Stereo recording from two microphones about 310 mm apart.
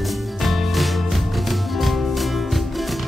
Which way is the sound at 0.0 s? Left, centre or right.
Centre.